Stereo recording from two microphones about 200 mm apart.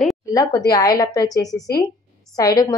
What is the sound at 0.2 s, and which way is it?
A woman's voice, 15° left (ahead or behind).